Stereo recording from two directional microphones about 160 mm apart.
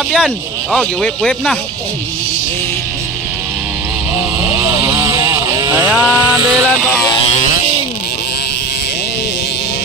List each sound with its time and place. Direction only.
0.1 s speech: centre (ahead or behind)
4.6 s vehicle: 15° right (ahead or behind)
5.9 s chainsaw: 10° right (ahead or behind)
6.5 s speech: 5° left (ahead or behind)